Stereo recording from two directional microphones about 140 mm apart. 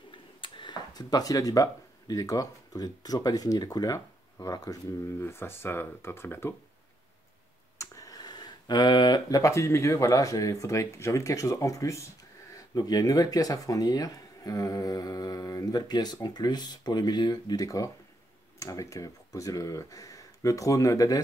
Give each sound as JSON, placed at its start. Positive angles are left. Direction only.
{"t": 0.1, "sound": "speech", "side_deg": 35}
{"t": 7.8, "sound": "speech", "side_deg": 25}